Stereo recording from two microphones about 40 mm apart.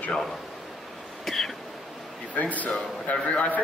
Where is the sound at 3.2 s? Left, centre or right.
Left.